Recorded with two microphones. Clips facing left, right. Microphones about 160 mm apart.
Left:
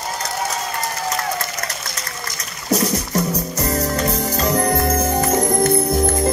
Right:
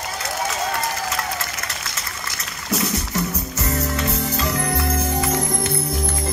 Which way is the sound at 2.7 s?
40° left (ahead or behind).